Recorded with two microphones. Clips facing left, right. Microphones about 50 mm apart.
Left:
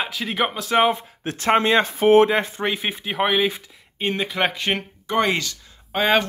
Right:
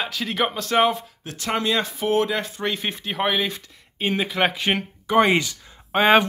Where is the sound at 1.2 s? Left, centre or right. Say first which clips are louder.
Left 6 dB; left.